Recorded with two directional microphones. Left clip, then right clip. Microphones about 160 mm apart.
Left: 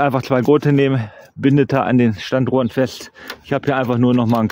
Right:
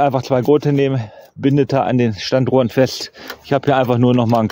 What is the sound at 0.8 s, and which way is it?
Speech, 5° left (ahead or behind).